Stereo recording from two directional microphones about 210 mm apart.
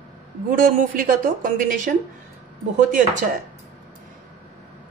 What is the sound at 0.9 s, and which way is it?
A woman's voice, 40° right (ahead or behind).